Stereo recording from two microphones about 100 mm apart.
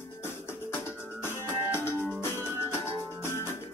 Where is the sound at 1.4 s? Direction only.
25° left (ahead or behind).